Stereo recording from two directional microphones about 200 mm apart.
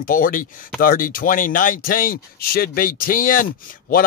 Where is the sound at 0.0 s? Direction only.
45° left (ahead or behind).